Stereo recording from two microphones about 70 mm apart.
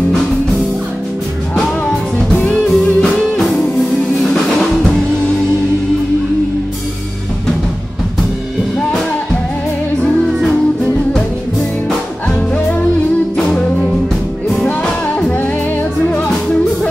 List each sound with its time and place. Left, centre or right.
2.3 s music: centre
3.0 s music: centre
10.2 s music: centre
14.8 s music: centre